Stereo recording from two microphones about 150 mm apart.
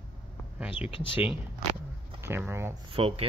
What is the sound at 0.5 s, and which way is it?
Speech, 5° right (ahead or behind).